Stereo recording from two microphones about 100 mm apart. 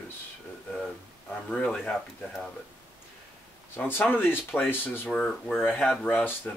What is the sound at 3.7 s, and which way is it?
Speech, 20° left (ahead or behind).